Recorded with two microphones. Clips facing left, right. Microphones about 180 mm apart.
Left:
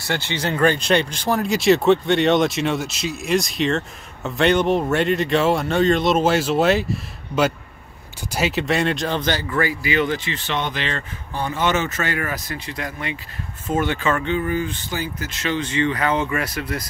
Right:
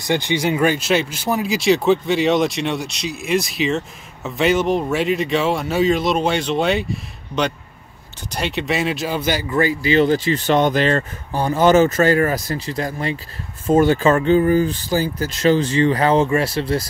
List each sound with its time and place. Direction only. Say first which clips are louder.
0.0 s a man's voice: right 5 dB; 15° right (ahead or behind)